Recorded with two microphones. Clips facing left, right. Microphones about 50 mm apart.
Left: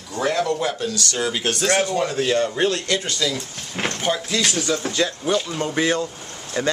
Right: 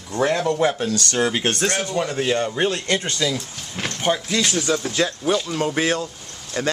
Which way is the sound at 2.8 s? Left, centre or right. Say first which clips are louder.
Right 1 dB; right.